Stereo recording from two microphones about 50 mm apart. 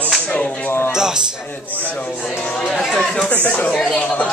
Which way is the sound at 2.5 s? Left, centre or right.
Centre.